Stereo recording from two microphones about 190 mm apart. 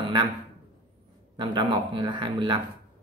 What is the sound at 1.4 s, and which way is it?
A man's voice, 25° right (ahead or behind).